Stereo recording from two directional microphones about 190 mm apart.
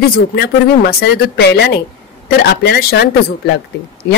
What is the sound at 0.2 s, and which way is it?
Speech, 55° left (ahead or behind).